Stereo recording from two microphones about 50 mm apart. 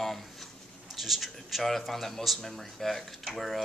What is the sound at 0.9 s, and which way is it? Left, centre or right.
Speech, centre.